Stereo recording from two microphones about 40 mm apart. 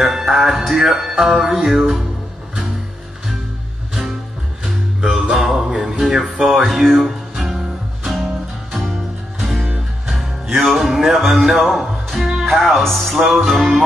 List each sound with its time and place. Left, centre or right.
0.0 s music: centre
3.9 s music: centre
12.3 s speech: centre
13.2 s music: centre